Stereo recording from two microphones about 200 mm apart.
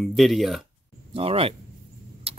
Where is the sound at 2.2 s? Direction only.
30° right (ahead or behind).